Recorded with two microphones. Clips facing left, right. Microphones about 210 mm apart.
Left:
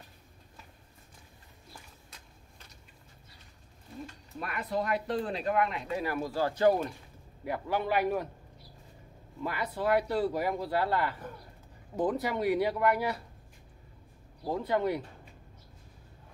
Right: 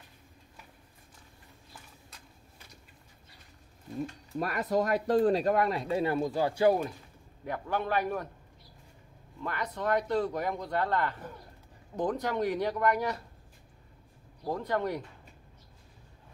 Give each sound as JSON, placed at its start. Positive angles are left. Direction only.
{"t": 4.0, "sound": "speech", "side_deg": -40}
{"t": 7.4, "sound": "speech", "side_deg": 10}
{"t": 9.4, "sound": "speech", "side_deg": 10}
{"t": 14.4, "sound": "speech", "side_deg": 5}